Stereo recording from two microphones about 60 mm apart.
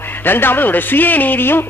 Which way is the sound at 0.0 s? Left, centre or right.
Left.